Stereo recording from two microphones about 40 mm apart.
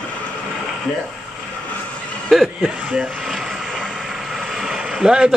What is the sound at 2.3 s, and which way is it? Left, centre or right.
Speech, centre.